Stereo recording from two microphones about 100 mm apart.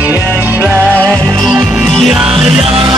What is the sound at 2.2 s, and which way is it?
Music, 65° right (ahead or behind).